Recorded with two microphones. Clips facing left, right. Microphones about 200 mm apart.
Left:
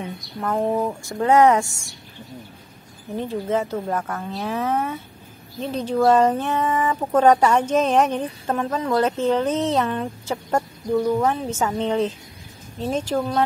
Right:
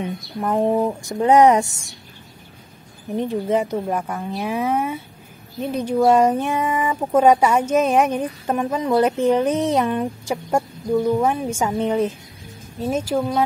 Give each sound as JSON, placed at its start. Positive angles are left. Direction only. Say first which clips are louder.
{"t": 0.0, "sound": "speech", "louder": "right 3 dB", "side_deg": -20}
{"t": 3.1, "sound": "speech", "louder": "right 3 dB", "side_deg": -15}